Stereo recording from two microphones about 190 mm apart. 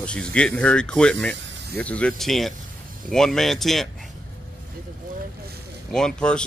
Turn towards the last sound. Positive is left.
turn(degrees=5)  # may be behind; listen again after turning